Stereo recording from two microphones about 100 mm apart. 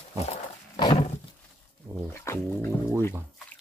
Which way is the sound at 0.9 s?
90° left.